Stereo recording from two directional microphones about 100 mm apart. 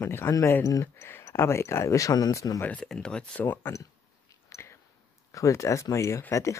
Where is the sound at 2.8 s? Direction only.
5° left (ahead or behind).